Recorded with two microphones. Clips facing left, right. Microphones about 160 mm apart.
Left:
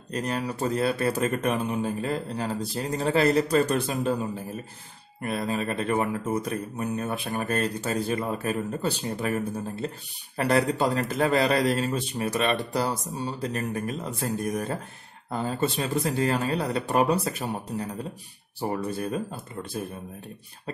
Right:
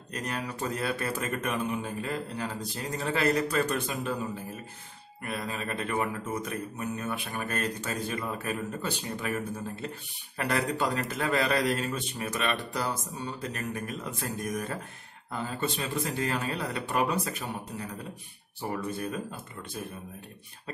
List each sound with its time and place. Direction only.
0.1 s a man's voice: 35° left (ahead or behind)
5.2 s a man's voice: 35° left (ahead or behind)
10.3 s a man's voice: 35° left (ahead or behind)